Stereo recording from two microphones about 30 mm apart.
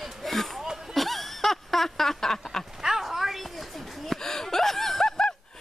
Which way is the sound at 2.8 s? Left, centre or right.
Centre.